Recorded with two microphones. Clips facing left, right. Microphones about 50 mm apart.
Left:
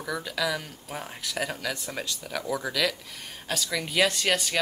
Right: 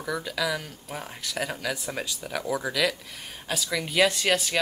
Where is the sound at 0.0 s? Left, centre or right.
Centre.